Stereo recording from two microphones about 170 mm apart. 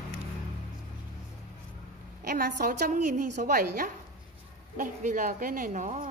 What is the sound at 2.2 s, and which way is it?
A woman's voice, 55° right (ahead or behind).